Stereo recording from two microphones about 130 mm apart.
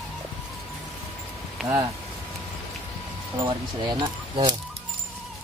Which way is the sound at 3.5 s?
40° right (ahead or behind).